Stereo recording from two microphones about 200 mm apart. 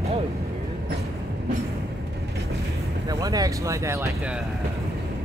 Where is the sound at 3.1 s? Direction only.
20° right (ahead or behind).